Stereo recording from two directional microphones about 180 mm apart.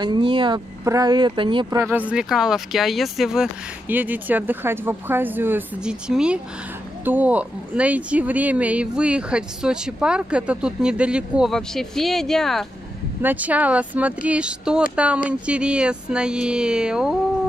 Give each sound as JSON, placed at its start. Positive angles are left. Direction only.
{"t": 0.0, "sound": "speech", "side_deg": -25}
{"t": 1.8, "sound": "speech", "side_deg": -10}
{"t": 13.2, "sound": "speech", "side_deg": -10}